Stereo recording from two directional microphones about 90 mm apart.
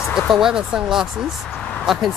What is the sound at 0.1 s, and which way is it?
Speech, 5° right (ahead or behind).